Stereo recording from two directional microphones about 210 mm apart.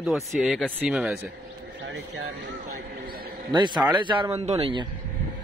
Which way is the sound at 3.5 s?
20° right (ahead or behind).